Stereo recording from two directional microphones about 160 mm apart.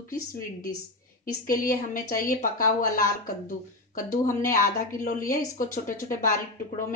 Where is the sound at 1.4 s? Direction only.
60° left (ahead or behind).